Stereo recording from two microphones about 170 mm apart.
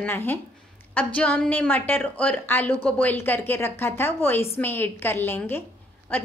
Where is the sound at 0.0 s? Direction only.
10° left (ahead or behind).